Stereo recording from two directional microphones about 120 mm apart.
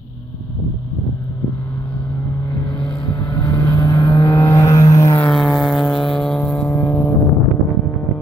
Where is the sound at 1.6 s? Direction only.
25° left (ahead or behind).